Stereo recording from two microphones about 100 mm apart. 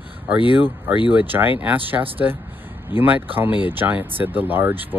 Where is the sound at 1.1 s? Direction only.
20° right (ahead or behind).